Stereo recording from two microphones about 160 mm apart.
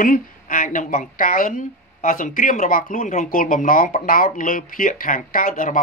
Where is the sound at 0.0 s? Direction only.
60° left (ahead or behind).